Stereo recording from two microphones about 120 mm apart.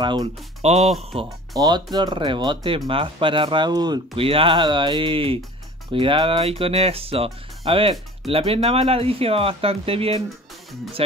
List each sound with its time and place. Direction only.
0.0 s speech: 40° right (ahead or behind)
0.6 s speech: 65° right (ahead or behind)
0.9 s speech: centre (ahead or behind)
1.6 s speech: 35° right (ahead or behind)
4.1 s speech: 50° right (ahead or behind)